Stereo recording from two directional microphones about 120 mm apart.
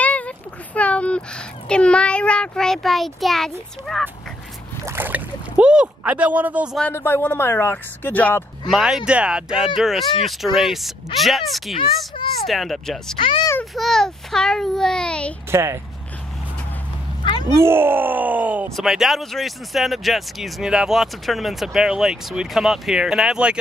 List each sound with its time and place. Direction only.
0.0 s a sound: 10° left (ahead or behind)
0.7 s a child's voice: 10° left (ahead or behind)
4.8 s a sound: 15° right (ahead or behind)
6.9 s speech: 20° left (ahead or behind)
8.6 s speech: 5° right (ahead or behind)
11.7 s speech: 45° left (ahead or behind)
12.4 s a child's voice: centre (ahead or behind)
15.5 s speech: 20° right (ahead or behind)
17.2 s a sound: 40° left (ahead or behind)
17.5 s speech: 20° right (ahead or behind)
18.8 s speech: 5° right (ahead or behind)